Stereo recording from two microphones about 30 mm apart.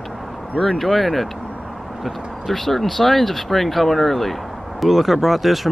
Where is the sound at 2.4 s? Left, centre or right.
Centre.